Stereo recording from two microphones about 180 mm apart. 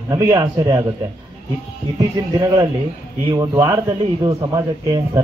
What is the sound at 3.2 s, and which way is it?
Speech, 20° right (ahead or behind).